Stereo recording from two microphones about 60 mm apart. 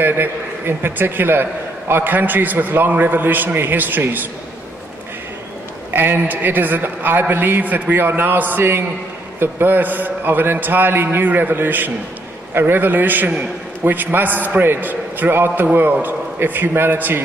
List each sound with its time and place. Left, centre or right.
0.0 s a man's voice: right
5.9 s a man's voice: right